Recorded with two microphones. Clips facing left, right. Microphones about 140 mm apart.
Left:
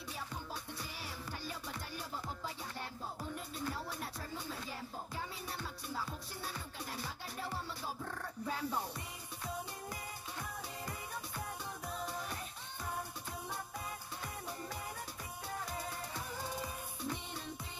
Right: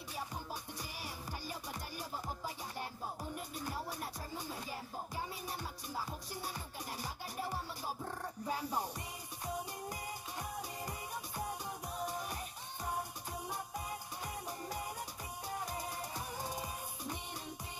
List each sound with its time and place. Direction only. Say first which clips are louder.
3.5 s music: left 1 dB; 15° right (ahead or behind)
10.9 s music: right 1 dB; 15° right (ahead or behind)
15.6 s music: right 1 dB; 15° right (ahead or behind)